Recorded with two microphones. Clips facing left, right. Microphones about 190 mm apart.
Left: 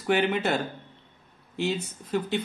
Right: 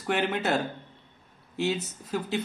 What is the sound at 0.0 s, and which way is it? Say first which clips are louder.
Speech: left 3 dB; centre (ahead or behind).